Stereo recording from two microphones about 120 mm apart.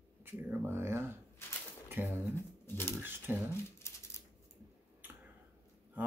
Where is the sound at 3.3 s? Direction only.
15° right (ahead or behind).